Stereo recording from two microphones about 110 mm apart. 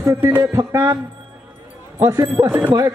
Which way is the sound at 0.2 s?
20° right (ahead or behind).